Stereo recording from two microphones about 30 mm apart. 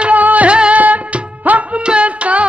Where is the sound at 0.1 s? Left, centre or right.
Right.